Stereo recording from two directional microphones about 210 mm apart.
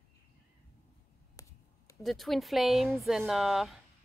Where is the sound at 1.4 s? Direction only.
15° left (ahead or behind).